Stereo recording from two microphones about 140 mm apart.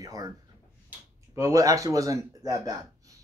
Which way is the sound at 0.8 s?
20° right (ahead or behind).